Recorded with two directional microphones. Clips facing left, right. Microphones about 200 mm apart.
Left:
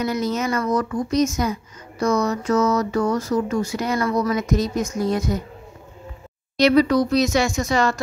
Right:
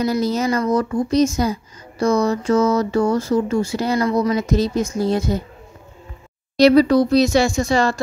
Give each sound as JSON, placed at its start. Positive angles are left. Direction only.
{"t": 0.0, "sound": "speech", "side_deg": -35}
{"t": 6.5, "sound": "speech", "side_deg": -35}